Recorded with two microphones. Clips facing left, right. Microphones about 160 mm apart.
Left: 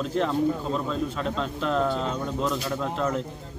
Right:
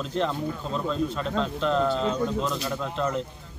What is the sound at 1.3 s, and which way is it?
Speech, 5° left (ahead or behind).